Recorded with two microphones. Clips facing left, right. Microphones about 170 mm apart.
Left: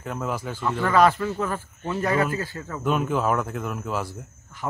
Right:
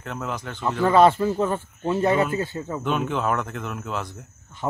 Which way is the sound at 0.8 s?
25° right (ahead or behind).